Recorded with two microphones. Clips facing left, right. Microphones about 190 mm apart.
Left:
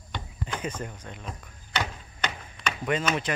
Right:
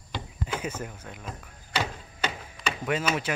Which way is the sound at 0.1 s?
10° right (ahead or behind).